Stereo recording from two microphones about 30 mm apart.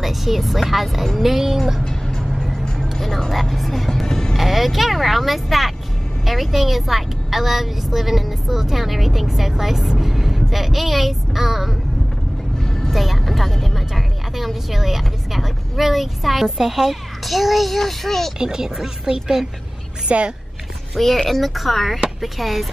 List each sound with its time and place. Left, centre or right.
0.0 s a woman's voice: centre
1.9 s music: centre
3.3 s speech: centre
3.9 s music: centre
4.4 s a woman's voice: centre
12.9 s speech: centre
18.4 s speech: centre
20.1 s a woman's voice: right
20.9 s speech: centre